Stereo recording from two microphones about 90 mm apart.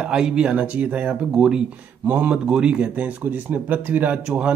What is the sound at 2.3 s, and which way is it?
A man's voice, 10° right (ahead or behind).